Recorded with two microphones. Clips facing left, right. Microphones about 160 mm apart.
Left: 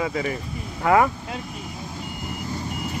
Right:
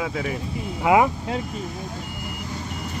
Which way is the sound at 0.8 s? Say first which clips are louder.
Right 1 dB; 15° right (ahead or behind).